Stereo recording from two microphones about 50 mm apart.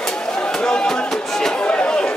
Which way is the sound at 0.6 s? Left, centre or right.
Centre.